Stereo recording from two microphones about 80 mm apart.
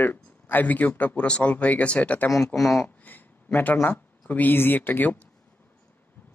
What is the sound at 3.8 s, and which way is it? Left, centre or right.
Speech, left.